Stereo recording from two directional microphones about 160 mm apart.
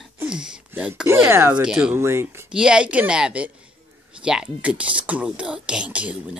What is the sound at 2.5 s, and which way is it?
Speech, 5° right (ahead or behind).